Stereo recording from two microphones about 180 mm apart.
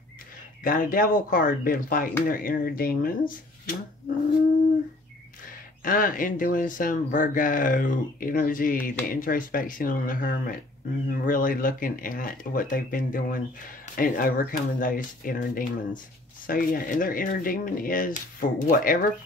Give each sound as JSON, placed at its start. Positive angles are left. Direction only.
{"t": 0.7, "sound": "speech", "side_deg": 50}
{"t": 5.9, "sound": "speech", "side_deg": 50}